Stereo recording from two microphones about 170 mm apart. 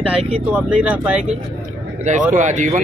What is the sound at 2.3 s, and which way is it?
Speech, 45° right (ahead or behind).